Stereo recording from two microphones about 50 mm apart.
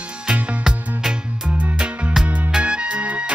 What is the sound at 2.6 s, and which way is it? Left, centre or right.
Music, right.